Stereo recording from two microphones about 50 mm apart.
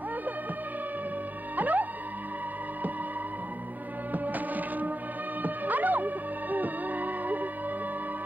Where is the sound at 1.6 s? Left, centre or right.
Right.